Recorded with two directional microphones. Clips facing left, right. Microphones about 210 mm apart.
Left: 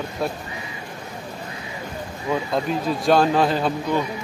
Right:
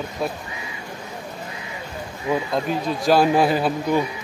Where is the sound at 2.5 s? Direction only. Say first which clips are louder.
Even; centre (ahead or behind).